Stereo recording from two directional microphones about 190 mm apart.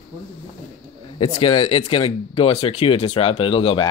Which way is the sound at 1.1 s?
25° left (ahead or behind).